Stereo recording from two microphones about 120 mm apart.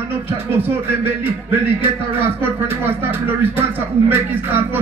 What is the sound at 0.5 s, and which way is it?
Speech, 20° right (ahead or behind).